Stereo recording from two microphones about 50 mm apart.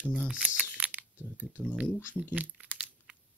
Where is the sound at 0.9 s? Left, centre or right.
Right.